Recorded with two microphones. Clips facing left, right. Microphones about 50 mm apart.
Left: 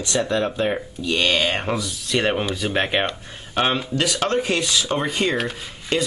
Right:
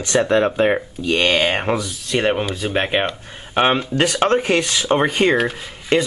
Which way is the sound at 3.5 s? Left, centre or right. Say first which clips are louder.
Right 4 dB; right.